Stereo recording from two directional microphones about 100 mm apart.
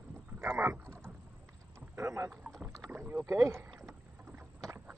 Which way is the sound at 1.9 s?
25° right (ahead or behind).